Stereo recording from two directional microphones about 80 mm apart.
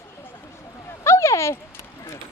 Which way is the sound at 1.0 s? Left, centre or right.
Left.